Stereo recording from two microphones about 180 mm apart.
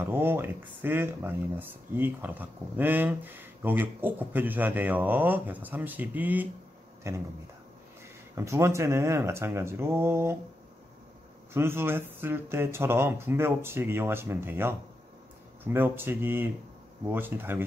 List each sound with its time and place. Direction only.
0.0 s speech: 10° right (ahead or behind)
8.4 s speech: 15° right (ahead or behind)
11.5 s speech: 15° right (ahead or behind)